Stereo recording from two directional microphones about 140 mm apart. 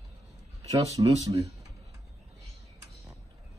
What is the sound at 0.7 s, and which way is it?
Speech, 25° right (ahead or behind).